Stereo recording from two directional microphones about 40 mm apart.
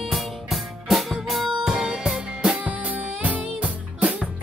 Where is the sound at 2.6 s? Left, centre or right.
Right.